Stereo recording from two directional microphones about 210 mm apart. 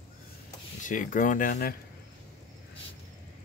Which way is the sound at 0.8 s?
35° left (ahead or behind).